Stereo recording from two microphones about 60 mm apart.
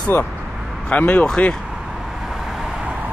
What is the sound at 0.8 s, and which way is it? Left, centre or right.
Speech, left.